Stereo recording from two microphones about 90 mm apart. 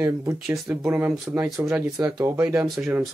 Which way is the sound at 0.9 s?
20° right (ahead or behind).